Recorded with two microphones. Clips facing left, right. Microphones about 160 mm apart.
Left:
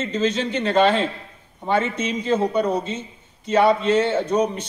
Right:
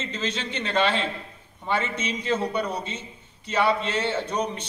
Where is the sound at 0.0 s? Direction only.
45° left (ahead or behind).